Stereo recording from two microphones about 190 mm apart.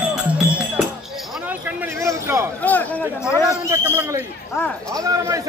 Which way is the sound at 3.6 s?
15° right (ahead or behind).